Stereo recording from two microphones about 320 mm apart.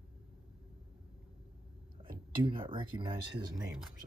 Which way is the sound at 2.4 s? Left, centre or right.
Centre.